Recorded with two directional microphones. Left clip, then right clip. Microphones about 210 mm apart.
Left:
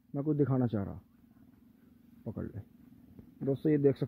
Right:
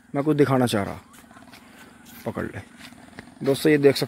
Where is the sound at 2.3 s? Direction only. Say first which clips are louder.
Right 13 dB; 10° right (ahead or behind).